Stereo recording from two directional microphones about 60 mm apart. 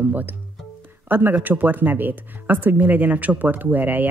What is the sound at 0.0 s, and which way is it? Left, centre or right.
A woman's voice, right.